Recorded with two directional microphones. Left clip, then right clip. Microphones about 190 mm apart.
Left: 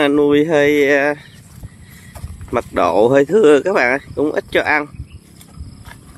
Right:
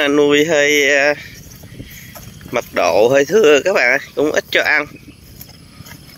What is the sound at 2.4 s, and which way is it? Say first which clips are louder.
Speech: even; 20° left (ahead or behind).